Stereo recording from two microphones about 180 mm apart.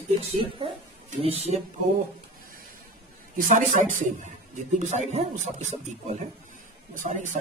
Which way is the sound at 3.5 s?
45° right (ahead or behind).